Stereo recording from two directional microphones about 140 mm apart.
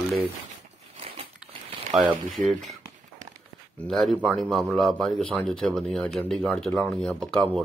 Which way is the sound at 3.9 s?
Centre (ahead or behind).